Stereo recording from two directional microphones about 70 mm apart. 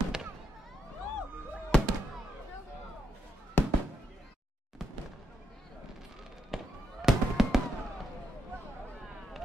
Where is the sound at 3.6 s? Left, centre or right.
Left.